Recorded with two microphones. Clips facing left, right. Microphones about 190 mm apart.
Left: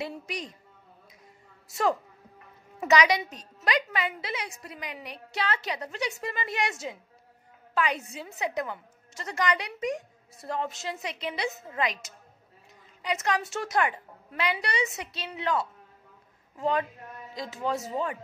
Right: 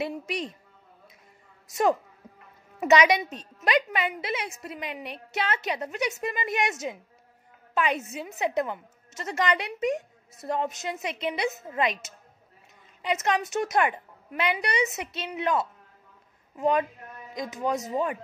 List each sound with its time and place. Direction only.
0.0 s a woman's voice: 25° right (ahead or behind)
1.7 s a man's voice: 20° right (ahead or behind)